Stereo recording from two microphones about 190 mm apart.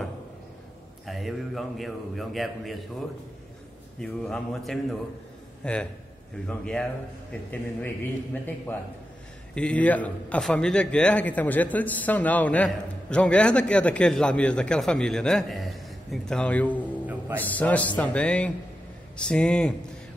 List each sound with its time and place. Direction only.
1.0 s a man's voice: centre (ahead or behind)
4.0 s a man's voice: 5° left (ahead or behind)
17.0 s music: 10° right (ahead or behind)
17.4 s a man's voice: 10° left (ahead or behind)